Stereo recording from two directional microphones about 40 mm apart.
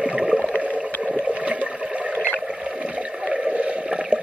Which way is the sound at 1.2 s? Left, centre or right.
Right.